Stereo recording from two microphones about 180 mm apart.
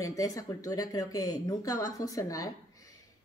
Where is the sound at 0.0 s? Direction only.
20° left (ahead or behind).